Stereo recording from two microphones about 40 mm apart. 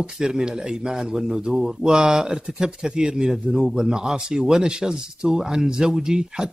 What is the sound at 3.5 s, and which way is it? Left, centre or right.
Speech, centre.